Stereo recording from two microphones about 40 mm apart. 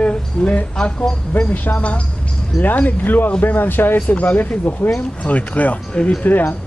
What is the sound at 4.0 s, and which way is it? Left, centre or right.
Speech, left.